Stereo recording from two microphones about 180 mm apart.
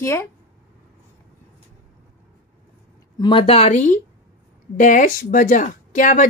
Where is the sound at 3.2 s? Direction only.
30° left (ahead or behind).